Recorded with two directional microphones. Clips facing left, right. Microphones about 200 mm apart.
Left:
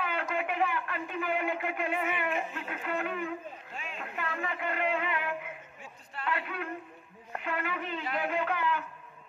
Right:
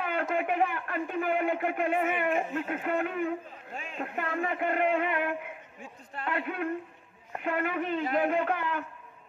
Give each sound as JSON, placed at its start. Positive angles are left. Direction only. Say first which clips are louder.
{"t": 0.0, "sound": "a man's voice", "louder": "right 3 dB", "side_deg": -50}